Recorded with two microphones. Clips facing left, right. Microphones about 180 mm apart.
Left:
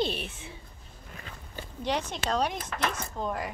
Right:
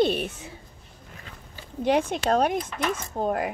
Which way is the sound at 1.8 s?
55° right (ahead or behind).